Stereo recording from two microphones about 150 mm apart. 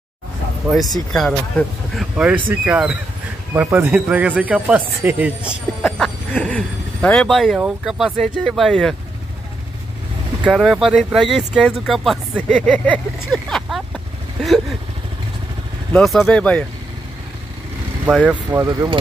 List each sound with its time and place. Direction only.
1.1 s speech: 5° left (ahead or behind)
5.9 s speech: 5° left (ahead or behind)
10.4 s speech: 5° right (ahead or behind)
15.9 s speech: centre (ahead or behind)
18.0 s speech: 10° right (ahead or behind)